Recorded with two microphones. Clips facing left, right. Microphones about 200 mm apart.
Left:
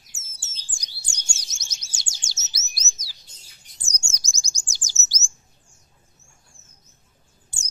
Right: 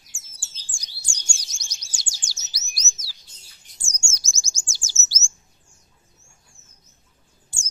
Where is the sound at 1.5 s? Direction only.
20° left (ahead or behind).